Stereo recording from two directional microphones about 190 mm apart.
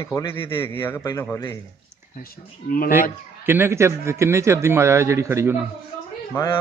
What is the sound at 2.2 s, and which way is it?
Speech, 50° left (ahead or behind).